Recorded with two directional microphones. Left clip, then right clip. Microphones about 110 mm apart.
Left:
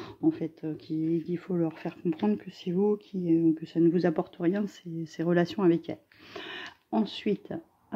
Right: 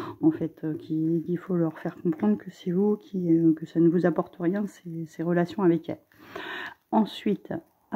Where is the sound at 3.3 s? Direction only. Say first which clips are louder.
Right 3 dB; 20° right (ahead or behind).